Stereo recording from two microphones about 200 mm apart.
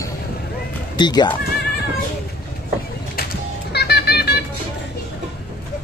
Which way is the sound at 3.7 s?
55° left (ahead or behind).